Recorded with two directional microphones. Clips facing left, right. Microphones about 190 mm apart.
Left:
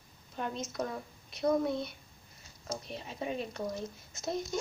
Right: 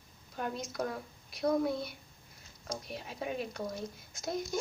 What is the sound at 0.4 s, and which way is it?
Speech, 5° right (ahead or behind).